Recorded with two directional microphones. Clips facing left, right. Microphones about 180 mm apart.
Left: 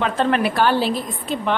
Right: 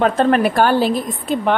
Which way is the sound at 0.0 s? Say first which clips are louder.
Right 5 dB; 45° right (ahead or behind).